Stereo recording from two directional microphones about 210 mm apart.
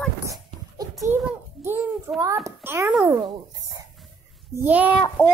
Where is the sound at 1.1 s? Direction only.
10° right (ahead or behind).